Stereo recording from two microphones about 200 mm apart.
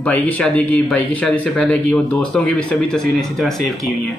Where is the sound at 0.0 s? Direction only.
5° left (ahead or behind).